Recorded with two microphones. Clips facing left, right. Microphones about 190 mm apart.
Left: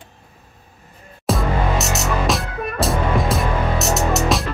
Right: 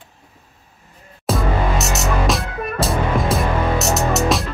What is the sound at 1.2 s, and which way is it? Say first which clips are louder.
Music: even; centre (ahead or behind).